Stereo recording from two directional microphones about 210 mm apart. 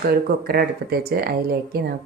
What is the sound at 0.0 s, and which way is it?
Speech, 45° right (ahead or behind).